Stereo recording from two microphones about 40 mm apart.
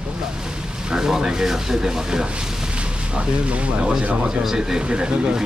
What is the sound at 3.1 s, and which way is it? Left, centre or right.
Speech, right.